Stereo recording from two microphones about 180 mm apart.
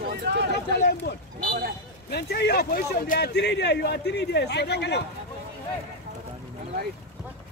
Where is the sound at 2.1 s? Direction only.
65° left (ahead or behind).